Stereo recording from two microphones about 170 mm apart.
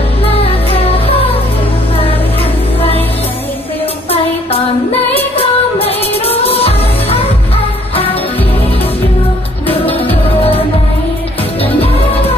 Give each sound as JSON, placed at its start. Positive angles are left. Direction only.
{"t": 0.2, "sound": "music", "side_deg": 35}
{"t": 5.1, "sound": "music", "side_deg": 35}